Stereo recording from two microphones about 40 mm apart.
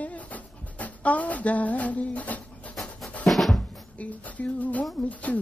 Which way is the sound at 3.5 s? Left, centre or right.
Left.